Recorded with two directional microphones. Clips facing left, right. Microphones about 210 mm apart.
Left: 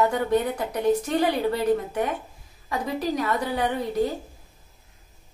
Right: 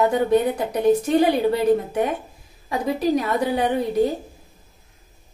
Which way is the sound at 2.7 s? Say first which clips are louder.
Right 6 dB; 20° right (ahead or behind).